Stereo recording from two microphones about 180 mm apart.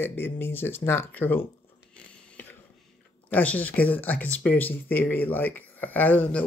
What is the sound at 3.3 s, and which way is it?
Speech, 10° left (ahead or behind).